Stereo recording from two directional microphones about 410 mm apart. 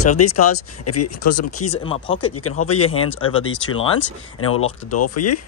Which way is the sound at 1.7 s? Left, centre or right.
Centre.